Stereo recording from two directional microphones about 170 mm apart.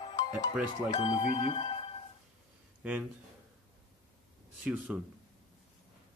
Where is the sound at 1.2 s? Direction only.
35° left (ahead or behind).